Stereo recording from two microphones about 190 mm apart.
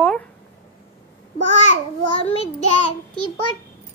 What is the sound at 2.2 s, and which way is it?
Child singing, 30° left (ahead or behind).